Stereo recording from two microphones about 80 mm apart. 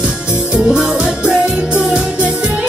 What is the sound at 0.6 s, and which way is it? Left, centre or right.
Music, centre.